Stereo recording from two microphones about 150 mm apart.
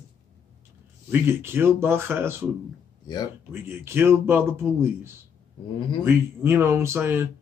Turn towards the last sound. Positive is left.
turn(degrees=-15)  # may be behind; listen again after turning